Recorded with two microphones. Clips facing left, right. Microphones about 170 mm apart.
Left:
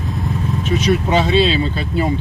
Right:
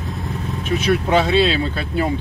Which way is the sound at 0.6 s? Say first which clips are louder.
Left 1 dB; 55° right (ahead or behind).